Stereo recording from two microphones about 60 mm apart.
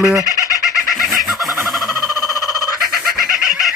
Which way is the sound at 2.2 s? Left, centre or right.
Left.